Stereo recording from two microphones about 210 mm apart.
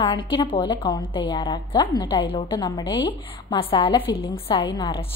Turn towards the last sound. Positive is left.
turn(degrees=20)  # may be behind; listen again after turning